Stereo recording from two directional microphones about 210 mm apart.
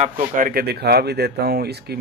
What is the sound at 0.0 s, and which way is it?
Speech, 35° right (ahead or behind).